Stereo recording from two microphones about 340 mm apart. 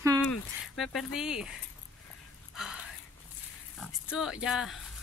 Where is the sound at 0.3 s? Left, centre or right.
Centre.